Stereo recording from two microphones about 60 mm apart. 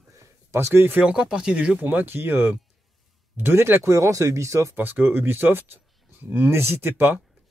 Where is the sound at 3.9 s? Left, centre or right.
Right.